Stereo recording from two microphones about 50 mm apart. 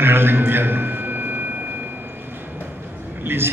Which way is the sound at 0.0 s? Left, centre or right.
Right.